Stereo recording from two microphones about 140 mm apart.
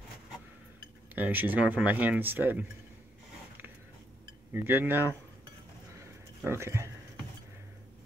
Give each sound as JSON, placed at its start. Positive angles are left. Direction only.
{"t": 1.1, "sound": "speech", "side_deg": -10}
{"t": 4.5, "sound": "speech", "side_deg": -15}
{"t": 5.9, "sound": "a sound", "side_deg": -20}